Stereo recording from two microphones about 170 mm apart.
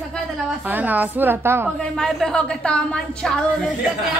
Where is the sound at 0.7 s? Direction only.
10° right (ahead or behind).